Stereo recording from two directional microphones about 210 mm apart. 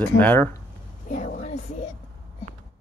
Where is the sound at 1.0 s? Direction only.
35° left (ahead or behind).